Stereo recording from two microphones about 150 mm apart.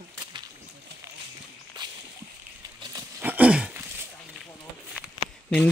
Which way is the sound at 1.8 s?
30° right (ahead or behind).